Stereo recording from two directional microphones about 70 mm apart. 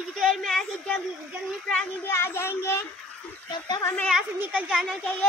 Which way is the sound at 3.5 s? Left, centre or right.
Left.